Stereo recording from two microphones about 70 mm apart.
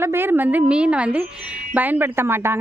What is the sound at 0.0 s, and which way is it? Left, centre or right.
A woman's voice, right.